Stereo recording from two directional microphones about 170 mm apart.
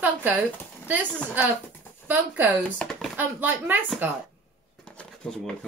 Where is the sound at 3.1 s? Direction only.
10° right (ahead or behind).